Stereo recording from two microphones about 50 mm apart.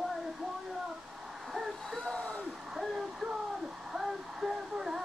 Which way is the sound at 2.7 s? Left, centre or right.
Centre.